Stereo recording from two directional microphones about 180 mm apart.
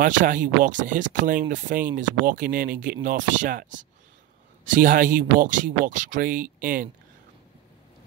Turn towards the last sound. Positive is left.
turn(degrees=-50)  # may be behind; listen again after turning